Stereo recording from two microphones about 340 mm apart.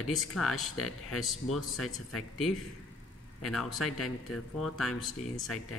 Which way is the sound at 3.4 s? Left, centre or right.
Centre.